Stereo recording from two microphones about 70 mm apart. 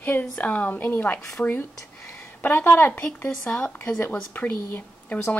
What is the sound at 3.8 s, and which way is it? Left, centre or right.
Speech, left.